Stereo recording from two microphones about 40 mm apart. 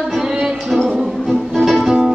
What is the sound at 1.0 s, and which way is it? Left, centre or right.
Music, centre.